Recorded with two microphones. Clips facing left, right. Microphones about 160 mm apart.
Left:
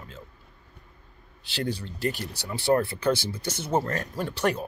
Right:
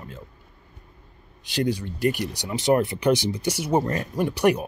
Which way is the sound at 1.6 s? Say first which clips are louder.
Right 6 dB; 15° right (ahead or behind).